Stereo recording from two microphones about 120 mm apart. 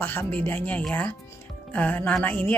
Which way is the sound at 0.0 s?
20° left (ahead or behind).